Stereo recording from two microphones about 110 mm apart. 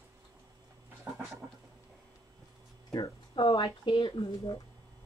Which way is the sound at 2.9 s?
40° left (ahead or behind).